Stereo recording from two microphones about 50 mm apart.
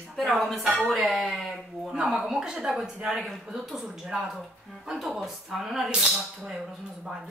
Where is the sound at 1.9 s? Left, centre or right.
Centre.